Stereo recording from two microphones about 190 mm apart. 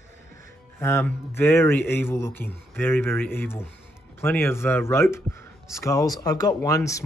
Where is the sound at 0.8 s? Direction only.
15° left (ahead or behind).